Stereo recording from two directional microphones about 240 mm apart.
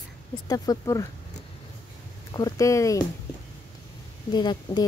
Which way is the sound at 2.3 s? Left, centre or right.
Centre.